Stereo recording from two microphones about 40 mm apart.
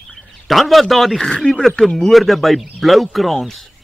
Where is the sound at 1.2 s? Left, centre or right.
Centre.